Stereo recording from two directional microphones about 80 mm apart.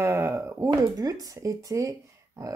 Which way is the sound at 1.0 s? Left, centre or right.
Right.